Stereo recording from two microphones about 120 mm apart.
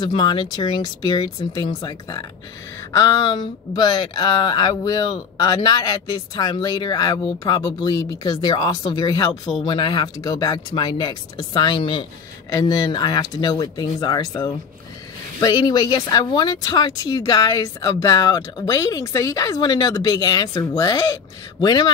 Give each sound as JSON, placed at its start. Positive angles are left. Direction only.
{"t": 0.0, "sound": "speech", "side_deg": 40}
{"t": 12.4, "sound": "speech", "side_deg": 30}
{"t": 21.5, "sound": "speech", "side_deg": 35}